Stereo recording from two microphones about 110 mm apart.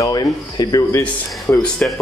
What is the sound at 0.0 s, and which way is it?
Speech, 35° left (ahead or behind).